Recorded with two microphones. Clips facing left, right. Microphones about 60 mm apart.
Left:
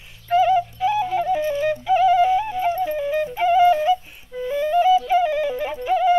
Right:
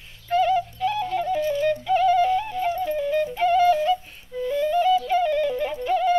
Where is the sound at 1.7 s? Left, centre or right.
Centre.